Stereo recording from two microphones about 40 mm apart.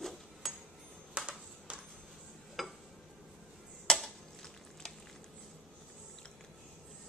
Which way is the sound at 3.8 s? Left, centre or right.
Centre.